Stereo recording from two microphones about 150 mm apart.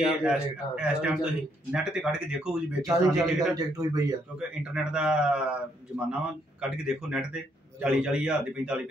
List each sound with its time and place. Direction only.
0.0 s speech: 5° right (ahead or behind)
3.3 s speech: 25° right (ahead or behind)
4.9 s a man's voice: 5° right (ahead or behind)